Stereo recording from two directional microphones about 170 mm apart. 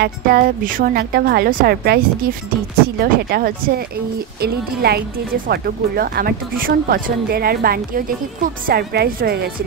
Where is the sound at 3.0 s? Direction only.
60° right (ahead or behind).